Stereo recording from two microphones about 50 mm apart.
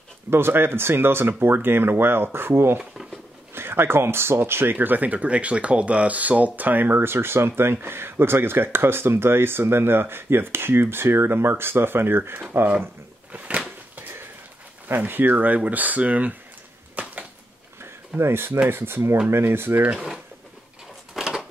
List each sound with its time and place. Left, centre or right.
0.3 s speech: right
4.7 s speech: right
15.0 s speech: right
17.0 s a sound: right
18.2 s speech: right
21.2 s a sound: centre